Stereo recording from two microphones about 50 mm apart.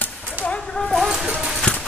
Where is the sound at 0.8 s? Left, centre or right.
Centre.